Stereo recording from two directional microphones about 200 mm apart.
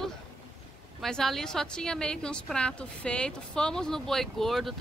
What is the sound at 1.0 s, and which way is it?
A woman's voice, centre (ahead or behind).